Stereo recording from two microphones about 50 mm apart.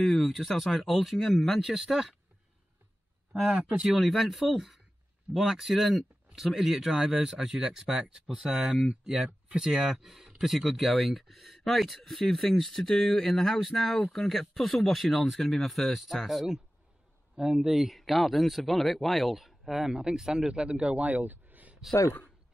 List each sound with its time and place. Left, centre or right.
0.0 s speech: centre
1.7 s speech: centre
3.4 s speech: centre
4.1 s speech: centre
21.0 s a sound: right